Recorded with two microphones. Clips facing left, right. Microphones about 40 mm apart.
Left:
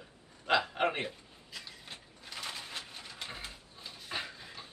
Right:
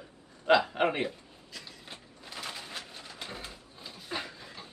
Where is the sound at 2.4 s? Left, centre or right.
Centre.